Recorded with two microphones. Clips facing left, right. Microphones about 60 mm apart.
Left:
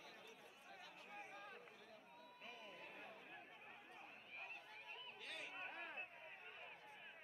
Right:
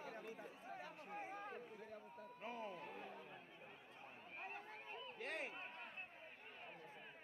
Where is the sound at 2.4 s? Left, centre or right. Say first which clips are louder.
Right 9 dB; right.